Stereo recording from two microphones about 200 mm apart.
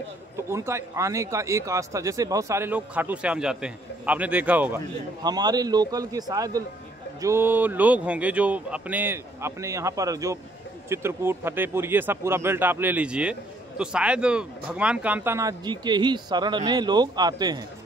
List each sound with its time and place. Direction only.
0.5 s speech: 15° right (ahead or behind)
5.2 s a man's voice: 20° right (ahead or behind)